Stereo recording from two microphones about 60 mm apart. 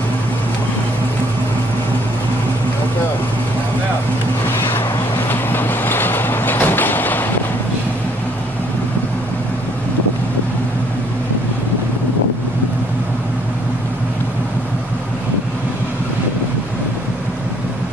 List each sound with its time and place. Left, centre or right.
5.3 s vehicle: left